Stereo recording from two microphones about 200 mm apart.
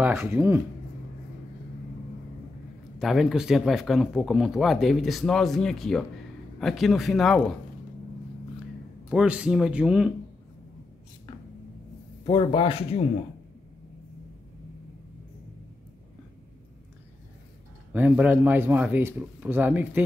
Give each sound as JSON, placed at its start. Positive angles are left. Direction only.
{"t": 0.0, "sound": "speech", "side_deg": -10}
{"t": 3.0, "sound": "speech", "side_deg": 0}
{"t": 9.1, "sound": "speech", "side_deg": -5}
{"t": 12.3, "sound": "speech", "side_deg": 25}
{"t": 17.9, "sound": "speech", "side_deg": -10}